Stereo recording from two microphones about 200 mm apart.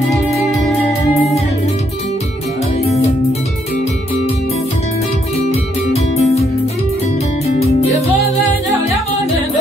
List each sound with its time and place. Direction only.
0.1 s music: centre (ahead or behind)
5.5 s music: 30° left (ahead or behind)
7.4 s music: 30° left (ahead or behind)